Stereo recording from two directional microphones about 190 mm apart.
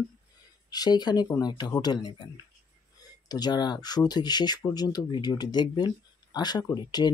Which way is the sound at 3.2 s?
20° left (ahead or behind).